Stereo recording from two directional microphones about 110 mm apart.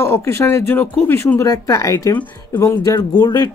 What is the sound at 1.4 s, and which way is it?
Speech, 30° left (ahead or behind).